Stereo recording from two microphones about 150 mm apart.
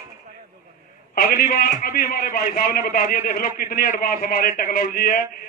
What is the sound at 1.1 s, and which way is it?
A man's voice, 75° left (ahead or behind).